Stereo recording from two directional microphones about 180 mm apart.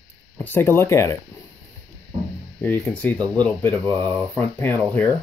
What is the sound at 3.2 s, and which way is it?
Speech, 25° right (ahead or behind).